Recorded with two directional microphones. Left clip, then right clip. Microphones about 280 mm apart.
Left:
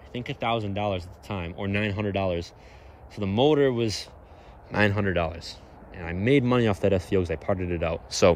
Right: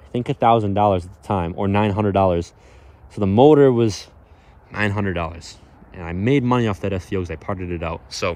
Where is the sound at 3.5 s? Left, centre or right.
Right.